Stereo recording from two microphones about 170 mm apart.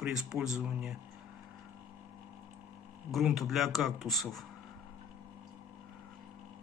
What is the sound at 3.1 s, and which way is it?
A man's voice, centre (ahead or behind).